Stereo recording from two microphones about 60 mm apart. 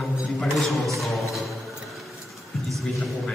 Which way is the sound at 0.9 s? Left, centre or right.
Centre.